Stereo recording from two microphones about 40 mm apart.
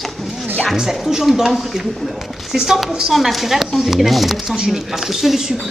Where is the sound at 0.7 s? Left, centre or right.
Centre.